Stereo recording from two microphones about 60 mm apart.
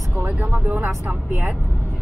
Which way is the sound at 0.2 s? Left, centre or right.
Right.